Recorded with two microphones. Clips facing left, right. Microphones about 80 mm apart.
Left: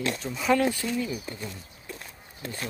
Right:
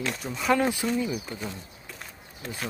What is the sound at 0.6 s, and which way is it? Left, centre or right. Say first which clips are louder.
Speech: right 1 dB; centre.